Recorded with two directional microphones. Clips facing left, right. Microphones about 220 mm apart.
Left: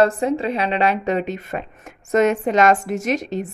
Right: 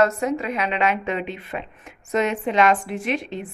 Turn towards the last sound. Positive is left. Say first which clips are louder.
# left 4 dB
turn(degrees=40)  # may be behind; listen again after turning